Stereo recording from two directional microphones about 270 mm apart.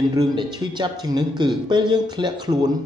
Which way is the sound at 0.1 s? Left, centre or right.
Centre.